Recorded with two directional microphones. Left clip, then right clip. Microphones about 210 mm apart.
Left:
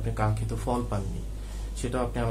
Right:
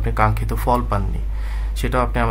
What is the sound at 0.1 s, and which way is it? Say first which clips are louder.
Speech: right 12 dB; 45° right (ahead or behind).